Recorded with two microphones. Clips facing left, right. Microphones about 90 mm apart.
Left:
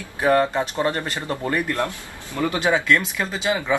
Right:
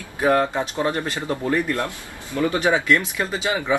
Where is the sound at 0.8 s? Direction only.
15° right (ahead or behind).